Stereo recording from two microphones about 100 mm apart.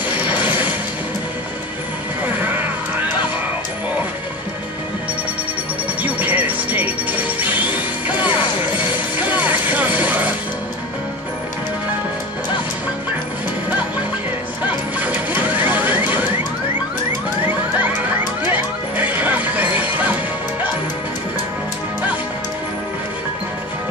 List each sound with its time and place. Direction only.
0.2 s a sound: 15° right (ahead or behind)
2.2 s music: 15° right (ahead or behind)
6.0 s music: 15° right (ahead or behind)
15.0 s squeal: 15° right (ahead or behind)
18.4 s music: 15° right (ahead or behind)